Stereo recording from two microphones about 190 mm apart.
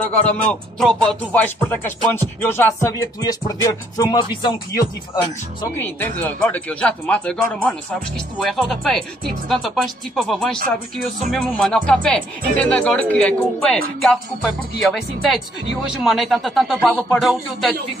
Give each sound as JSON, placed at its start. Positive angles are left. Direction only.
{"t": 0.0, "sound": "speech", "side_deg": 5}
{"t": 2.4, "sound": "music", "side_deg": 10}
{"t": 6.2, "sound": "speech", "side_deg": 10}